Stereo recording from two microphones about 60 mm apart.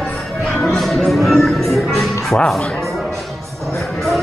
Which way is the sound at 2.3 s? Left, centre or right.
Centre.